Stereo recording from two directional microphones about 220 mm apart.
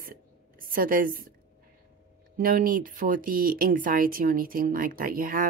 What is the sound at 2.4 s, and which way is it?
Speech, 40° right (ahead or behind).